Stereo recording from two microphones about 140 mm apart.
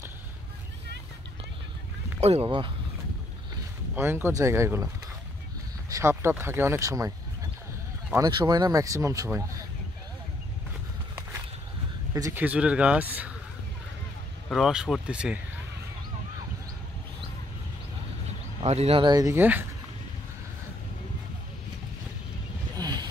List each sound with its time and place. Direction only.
2.1 s quack: 50° right (ahead or behind)
2.4 s speech: 35° right (ahead or behind)
3.9 s speech: 15° right (ahead or behind)
5.9 s speech: 20° right (ahead or behind)
8.2 s speech: 30° right (ahead or behind)
12.1 s speech: 25° right (ahead or behind)
12.4 s speech: 10° right (ahead or behind)
14.5 s speech: 5° right (ahead or behind)
18.6 s speech: 45° right (ahead or behind)
19.0 s speech: 25° right (ahead or behind)
19.3 s speech: 15° right (ahead or behind)
22.8 s vehicle: 30° right (ahead or behind)